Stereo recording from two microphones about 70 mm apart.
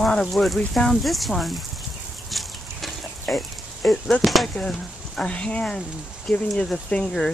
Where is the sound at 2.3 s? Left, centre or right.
Centre.